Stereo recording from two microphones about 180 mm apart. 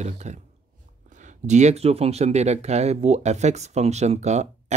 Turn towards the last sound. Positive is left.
turn(degrees=-40)  # may be behind; listen again after turning